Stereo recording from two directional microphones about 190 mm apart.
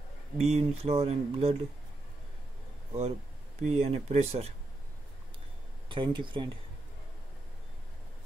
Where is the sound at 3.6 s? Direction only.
35° right (ahead or behind).